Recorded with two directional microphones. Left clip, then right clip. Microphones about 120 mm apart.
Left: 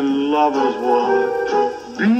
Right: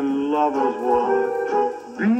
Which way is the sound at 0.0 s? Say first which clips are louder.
Left 4 dB; 30° left (ahead or behind).